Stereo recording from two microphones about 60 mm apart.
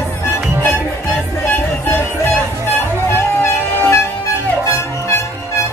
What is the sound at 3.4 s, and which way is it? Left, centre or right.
Music, left.